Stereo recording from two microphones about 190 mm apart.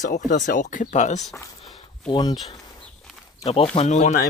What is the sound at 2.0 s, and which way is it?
Speech, 25° left (ahead or behind).